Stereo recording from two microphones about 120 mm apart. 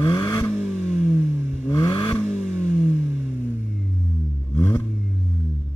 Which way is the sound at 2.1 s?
5° left (ahead or behind).